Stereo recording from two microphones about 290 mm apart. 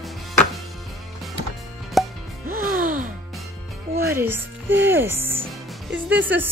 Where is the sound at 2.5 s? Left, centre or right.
Right.